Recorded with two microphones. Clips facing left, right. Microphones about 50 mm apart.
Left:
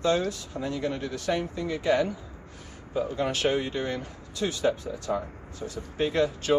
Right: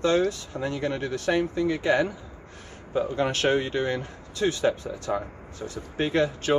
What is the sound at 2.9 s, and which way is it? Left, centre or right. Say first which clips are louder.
Speech: right 2 dB; right.